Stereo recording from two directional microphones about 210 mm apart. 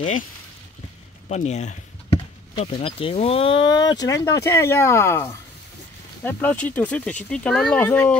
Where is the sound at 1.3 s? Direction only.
35° left (ahead or behind).